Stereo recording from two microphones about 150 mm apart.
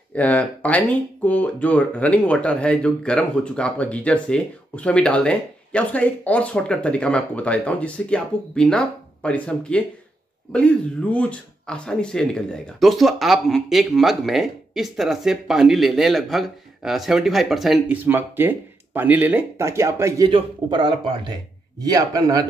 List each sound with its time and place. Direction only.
0.1 s speech: 10° left (ahead or behind)
18.0 s speech: 15° right (ahead or behind)
20.2 s a man's voice: 35° right (ahead or behind)